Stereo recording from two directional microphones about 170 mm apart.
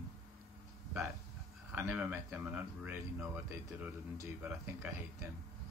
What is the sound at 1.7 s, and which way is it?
Speech, 10° right (ahead or behind).